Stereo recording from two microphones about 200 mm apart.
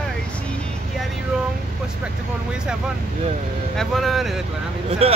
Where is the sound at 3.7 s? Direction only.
Centre (ahead or behind).